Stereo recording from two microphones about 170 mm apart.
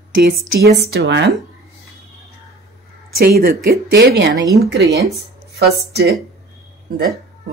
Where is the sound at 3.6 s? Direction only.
80° right.